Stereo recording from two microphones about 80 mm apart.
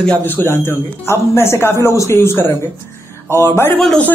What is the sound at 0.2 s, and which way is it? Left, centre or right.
A man's voice, left.